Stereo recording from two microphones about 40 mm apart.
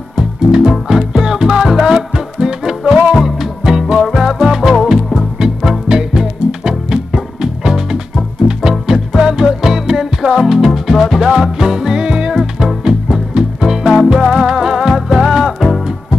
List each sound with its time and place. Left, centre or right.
0.5 s music: centre
2.9 s music: centre